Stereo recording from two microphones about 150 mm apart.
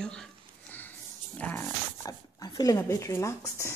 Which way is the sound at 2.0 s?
25° left (ahead or behind).